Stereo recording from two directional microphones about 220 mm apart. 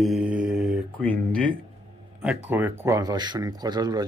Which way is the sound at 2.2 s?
5° right (ahead or behind).